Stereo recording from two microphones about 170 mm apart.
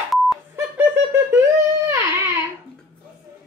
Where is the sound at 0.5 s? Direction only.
15° right (ahead or behind).